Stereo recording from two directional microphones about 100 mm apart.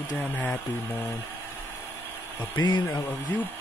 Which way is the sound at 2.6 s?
40° left (ahead or behind).